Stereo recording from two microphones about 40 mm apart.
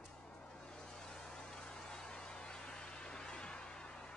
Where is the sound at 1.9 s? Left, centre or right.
Left.